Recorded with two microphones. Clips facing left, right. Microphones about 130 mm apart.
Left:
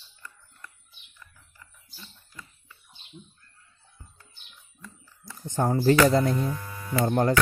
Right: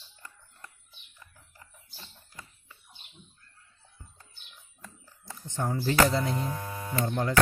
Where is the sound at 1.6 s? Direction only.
30° right (ahead or behind).